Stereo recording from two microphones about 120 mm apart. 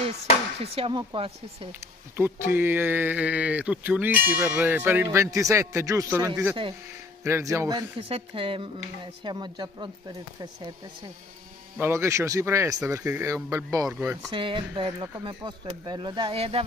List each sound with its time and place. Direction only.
0.7 s speech: 50° right (ahead or behind)
2.1 s speech: 20° right (ahead or behind)
8.0 s speech: 50° right (ahead or behind)
11.8 s speech: 25° right (ahead or behind)
14.3 s speech: 45° right (ahead or behind)